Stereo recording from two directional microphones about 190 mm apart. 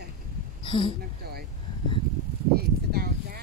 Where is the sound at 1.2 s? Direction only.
55° right (ahead or behind).